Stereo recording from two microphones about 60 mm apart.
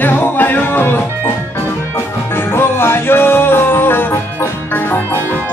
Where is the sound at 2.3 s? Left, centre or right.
Left.